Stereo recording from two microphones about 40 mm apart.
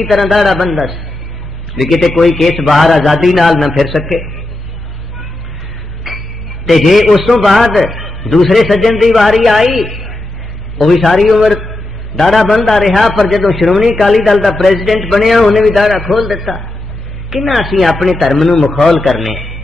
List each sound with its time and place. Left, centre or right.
0.0 s a man's voice: centre
2.0 s a man's voice: centre
6.7 s a man's voice: centre